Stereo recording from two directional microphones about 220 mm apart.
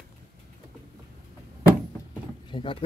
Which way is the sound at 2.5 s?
25° left (ahead or behind).